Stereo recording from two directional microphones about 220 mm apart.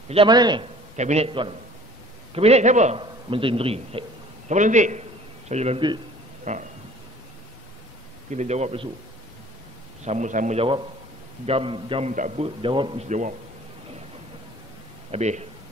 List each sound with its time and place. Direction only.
0.1 s a man's voice: 20° right (ahead or behind)
0.9 s a man's voice: 30° right (ahead or behind)
8.3 s speech: 30° right (ahead or behind)
10.0 s a man's voice: 35° right (ahead or behind)
15.0 s speech: 30° right (ahead or behind)